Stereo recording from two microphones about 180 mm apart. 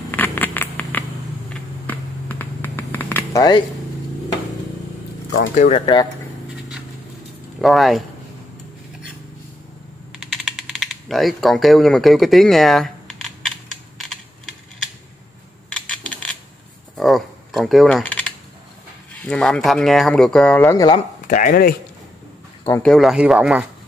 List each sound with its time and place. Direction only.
0.1 s a sound: 10° left (ahead or behind)
1.5 s finger snapping: 10° left (ahead or behind)
5.5 s speech: 45° left (ahead or behind)
7.6 s speech: centre (ahead or behind)
10.1 s typing: 5° right (ahead or behind)
15.7 s coin: 5° left (ahead or behind)
16.9 s speech: centre (ahead or behind)
21.3 s speech: 50° left (ahead or behind)
22.8 s speech: centre (ahead or behind)